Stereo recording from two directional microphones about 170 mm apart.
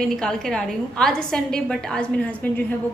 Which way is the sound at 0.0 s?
5° left (ahead or behind).